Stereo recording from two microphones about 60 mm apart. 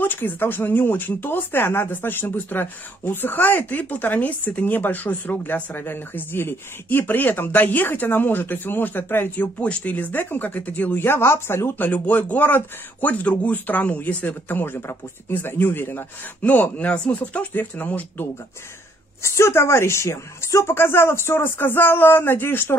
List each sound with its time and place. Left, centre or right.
0.0 s speech: left
9.6 s speech: left
11.1 s a woman's voice: left
11.9 s speech: left
19.2 s a woman's voice: left